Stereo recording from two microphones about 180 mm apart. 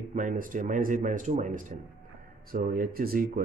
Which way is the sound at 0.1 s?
45° right (ahead or behind).